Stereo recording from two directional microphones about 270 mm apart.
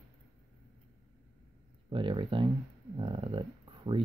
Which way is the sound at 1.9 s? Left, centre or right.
Centre.